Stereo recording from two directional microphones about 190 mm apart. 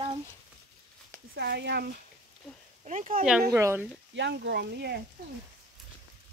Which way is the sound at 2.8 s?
40° right (ahead or behind).